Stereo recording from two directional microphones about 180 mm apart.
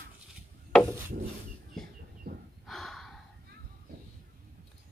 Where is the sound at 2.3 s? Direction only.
60° right (ahead or behind).